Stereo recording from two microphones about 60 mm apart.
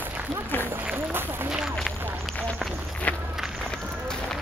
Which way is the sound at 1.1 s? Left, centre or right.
Right.